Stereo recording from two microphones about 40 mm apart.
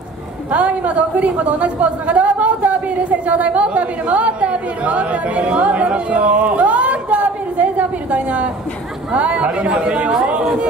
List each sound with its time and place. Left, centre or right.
0.5 s a woman's voice: right